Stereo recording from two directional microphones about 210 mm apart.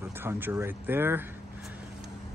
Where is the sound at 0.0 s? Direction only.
10° right (ahead or behind).